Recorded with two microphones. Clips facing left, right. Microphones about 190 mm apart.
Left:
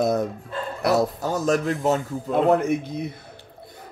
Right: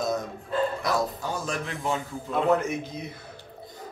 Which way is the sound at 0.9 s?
40° left (ahead or behind).